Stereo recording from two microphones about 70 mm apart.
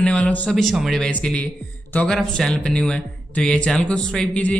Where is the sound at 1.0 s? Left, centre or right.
Centre.